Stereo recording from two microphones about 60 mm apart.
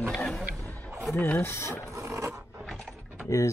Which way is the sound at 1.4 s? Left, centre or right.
Left.